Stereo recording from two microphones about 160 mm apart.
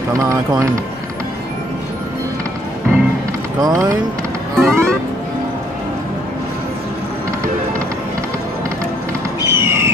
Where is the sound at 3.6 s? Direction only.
20° right (ahead or behind).